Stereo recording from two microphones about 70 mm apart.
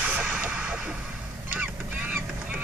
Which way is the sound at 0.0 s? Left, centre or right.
Right.